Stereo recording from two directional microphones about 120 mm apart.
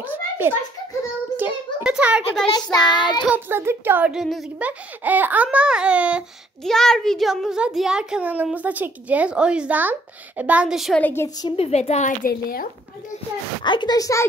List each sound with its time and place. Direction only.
0.0 s a child's voice: 15° right (ahead or behind)
1.3 s a sound: 10° right (ahead or behind)
2.5 s child singing: 35° left (ahead or behind)
3.3 s speech: 20° right (ahead or behind)
4.1 s a child's voice: centre (ahead or behind)
4.6 s speech: 15° right (ahead or behind)
6.6 s a child's voice: 5° left (ahead or behind)
11.0 s a woman's voice: 15° left (ahead or behind)
11.5 s a woman's voice: 60° left (ahead or behind)
13.7 s child singing: 40° left (ahead or behind)